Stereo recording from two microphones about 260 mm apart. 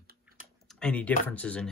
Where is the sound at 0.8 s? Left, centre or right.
Centre.